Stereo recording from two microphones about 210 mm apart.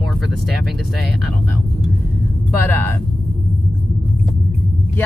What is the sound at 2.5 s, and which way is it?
Speech, 10° left (ahead or behind).